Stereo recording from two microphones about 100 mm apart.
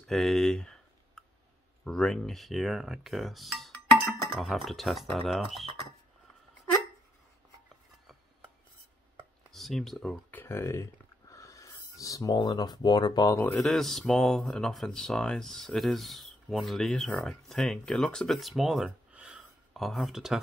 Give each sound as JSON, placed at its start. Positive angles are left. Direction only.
{"t": 0.0, "sound": "speech", "side_deg": 0}
{"t": 1.9, "sound": "speech", "side_deg": 5}
{"t": 9.5, "sound": "speech", "side_deg": 0}
{"t": 10.3, "sound": "a sound", "side_deg": 20}
{"t": 12.4, "sound": "speech", "side_deg": 50}
{"t": 13.6, "sound": "speech", "side_deg": 5}
{"t": 19.7, "sound": "speech", "side_deg": 0}